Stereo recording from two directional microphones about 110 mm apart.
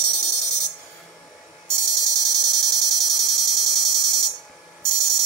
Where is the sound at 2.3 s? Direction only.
5° left (ahead or behind).